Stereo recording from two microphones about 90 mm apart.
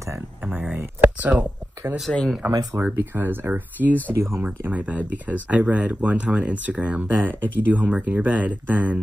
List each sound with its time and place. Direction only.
0.5 s speech: 20° right (ahead or behind)
2.1 s speech: 10° left (ahead or behind)
2.7 s speech: 25° right (ahead or behind)
4.2 s speech: 30° right (ahead or behind)
4.6 s speech: 15° right (ahead or behind)